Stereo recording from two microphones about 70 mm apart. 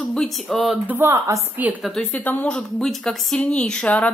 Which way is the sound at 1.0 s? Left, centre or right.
Right.